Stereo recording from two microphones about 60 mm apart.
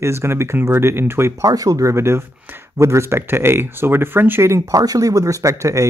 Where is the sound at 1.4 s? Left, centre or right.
Right.